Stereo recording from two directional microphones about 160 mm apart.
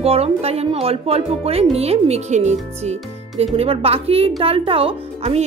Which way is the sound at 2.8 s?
45° right (ahead or behind).